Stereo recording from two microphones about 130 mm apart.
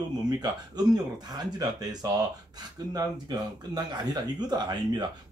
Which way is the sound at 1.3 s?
30° right (ahead or behind).